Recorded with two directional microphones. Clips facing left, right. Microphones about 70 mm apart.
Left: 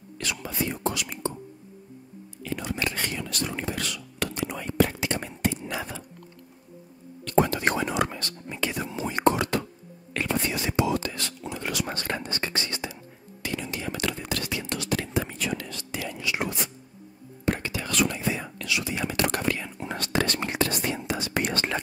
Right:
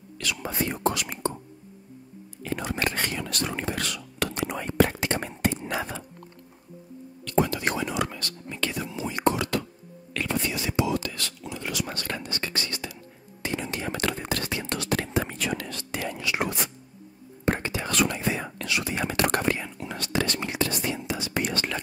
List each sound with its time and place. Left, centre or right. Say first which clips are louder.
0.2 s whispering: right 1 dB; left
0.7 s speech: right 2 dB; right
2.4 s whispering: right 2 dB; right
7.2 s whispering: left 2 dB; left; by 8.8 s centre
8.9 s whispering: left 3 dB; left
11.5 s whispering: left 1 dB; left
11.8 s whispering: left 2 dB; left
13.6 s whispering: right 1 dB; right
17.5 s whispering: right 1 dB; right
17.9 s whispering: even; right
19.3 s whispering: right 2 dB; right
20.0 s whispering: left 1 dB; left